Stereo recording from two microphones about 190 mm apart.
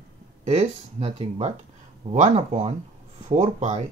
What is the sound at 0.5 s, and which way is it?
Speech, 35° right (ahead or behind).